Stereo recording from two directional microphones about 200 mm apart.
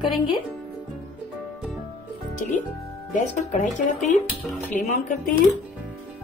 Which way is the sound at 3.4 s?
35° left (ahead or behind).